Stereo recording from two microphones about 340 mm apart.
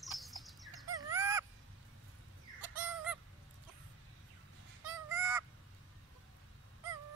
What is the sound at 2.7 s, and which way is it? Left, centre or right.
Fowl, centre.